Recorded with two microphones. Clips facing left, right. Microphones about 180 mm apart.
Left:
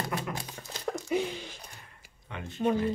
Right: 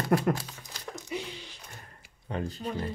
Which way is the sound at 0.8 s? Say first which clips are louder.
Left 7 dB; 50° left (ahead or behind).